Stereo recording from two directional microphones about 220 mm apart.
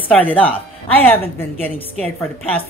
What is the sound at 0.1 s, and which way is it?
A woman's voice, 5° left (ahead or behind).